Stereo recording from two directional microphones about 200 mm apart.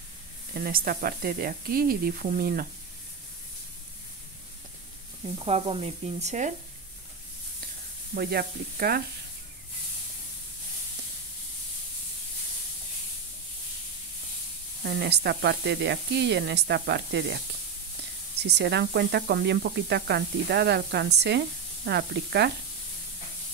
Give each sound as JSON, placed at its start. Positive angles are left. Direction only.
{"t": 0.6, "sound": "speech", "side_deg": -45}
{"t": 5.4, "sound": "sizzle", "side_deg": -30}
{"t": 8.1, "sound": "speech", "side_deg": -50}
{"t": 14.8, "sound": "speech", "side_deg": -55}
{"t": 18.5, "sound": "speech", "side_deg": -55}